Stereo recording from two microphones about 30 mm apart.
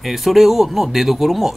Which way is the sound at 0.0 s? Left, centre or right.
Centre.